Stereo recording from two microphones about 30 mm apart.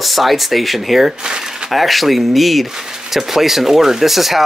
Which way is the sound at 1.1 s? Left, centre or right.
Right.